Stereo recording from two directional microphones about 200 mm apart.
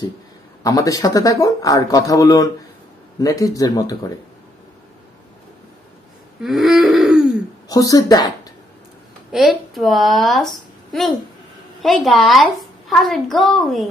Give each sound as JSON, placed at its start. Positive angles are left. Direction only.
{"t": 0.7, "sound": "speech", "side_deg": 15}
{"t": 6.4, "sound": "throat clearing", "side_deg": 0}
{"t": 7.6, "sound": "speech", "side_deg": 15}
{"t": 9.3, "sound": "a woman's voice", "side_deg": 0}